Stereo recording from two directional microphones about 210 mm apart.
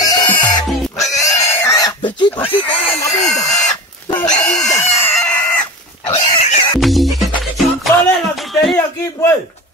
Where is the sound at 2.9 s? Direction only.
15° left (ahead or behind).